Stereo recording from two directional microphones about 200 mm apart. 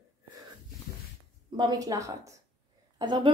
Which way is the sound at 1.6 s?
20° right (ahead or behind).